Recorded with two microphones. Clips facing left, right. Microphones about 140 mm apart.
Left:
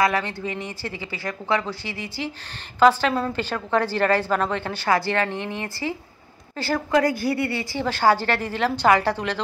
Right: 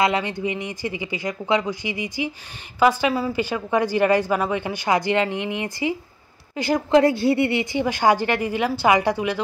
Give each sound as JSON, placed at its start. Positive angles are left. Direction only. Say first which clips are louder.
{"t": 0.0, "sound": "a woman's voice", "louder": "right 1 dB", "side_deg": -20}